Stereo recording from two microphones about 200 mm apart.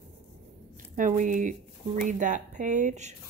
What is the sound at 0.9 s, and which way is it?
Speech, 40° right (ahead or behind).